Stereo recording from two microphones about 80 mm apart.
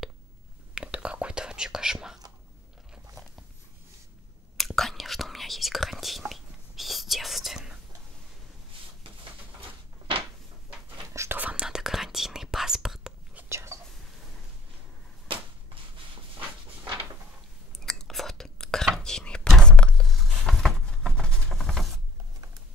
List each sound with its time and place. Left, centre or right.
0.7 s whispering: centre
4.6 s whispering: centre
9.6 s a sound: right
11.3 s whispering: centre
13.5 s whispering: right
17.7 s chewing: centre
18.9 s a sound: centre